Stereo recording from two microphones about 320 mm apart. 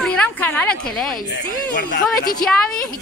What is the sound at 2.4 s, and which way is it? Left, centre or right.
Speech, centre.